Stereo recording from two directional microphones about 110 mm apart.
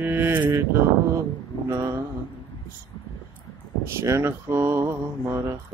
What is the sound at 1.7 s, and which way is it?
Mantra, 30° right (ahead or behind).